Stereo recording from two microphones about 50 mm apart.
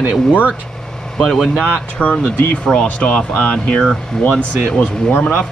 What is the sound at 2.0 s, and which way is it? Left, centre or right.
Speech, left.